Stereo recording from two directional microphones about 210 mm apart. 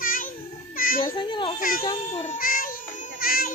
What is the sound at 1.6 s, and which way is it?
Speech, 45° left (ahead or behind).